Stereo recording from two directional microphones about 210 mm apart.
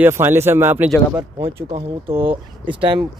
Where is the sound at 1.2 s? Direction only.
25° right (ahead or behind).